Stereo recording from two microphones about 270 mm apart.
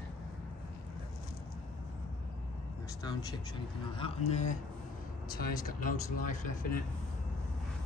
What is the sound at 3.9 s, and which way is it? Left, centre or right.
Speech, left.